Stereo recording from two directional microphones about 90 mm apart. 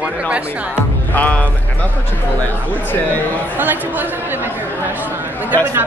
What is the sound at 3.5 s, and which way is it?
Speech, 20° right (ahead or behind).